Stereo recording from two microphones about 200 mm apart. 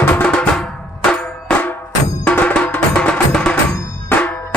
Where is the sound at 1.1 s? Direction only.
5° left (ahead or behind).